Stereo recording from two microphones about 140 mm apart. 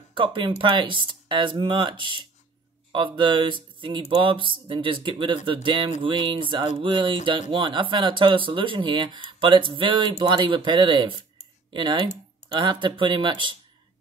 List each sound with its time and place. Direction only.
0.1 s speech: 35° right (ahead or behind)